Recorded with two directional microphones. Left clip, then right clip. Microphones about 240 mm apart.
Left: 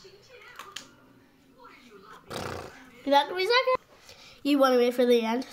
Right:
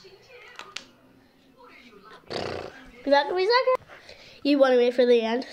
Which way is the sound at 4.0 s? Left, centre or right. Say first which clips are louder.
Right 4 dB; left.